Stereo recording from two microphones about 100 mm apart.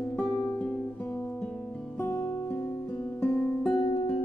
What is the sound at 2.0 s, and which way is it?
Music, 20° left (ahead or behind).